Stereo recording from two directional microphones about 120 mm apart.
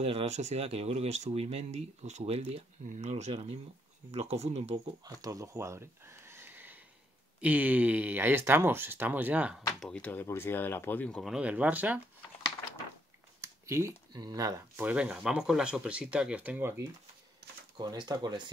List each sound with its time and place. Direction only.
0.0 s speech: 55° right (ahead or behind)
2.9 s speech: 70° right (ahead or behind)
5.0 s speech: 30° right (ahead or behind); by 9.6 s 10° right (ahead or behind)
9.8 s speech: 5° left (ahead or behind)
11.3 s speech: 10° right (ahead or behind)
13.4 s a sound: 25° right (ahead or behind)
14.1 s speech: 35° right (ahead or behind)
14.8 s speech: 10° right (ahead or behind)
17.7 s speech: 35° right (ahead or behind)